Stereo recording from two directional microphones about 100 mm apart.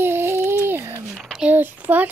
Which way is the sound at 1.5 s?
15° right (ahead or behind).